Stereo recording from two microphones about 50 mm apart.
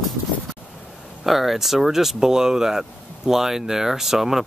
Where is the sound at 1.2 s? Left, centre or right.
Centre.